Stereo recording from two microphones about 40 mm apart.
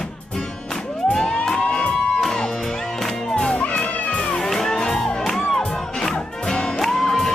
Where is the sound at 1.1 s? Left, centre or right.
Centre.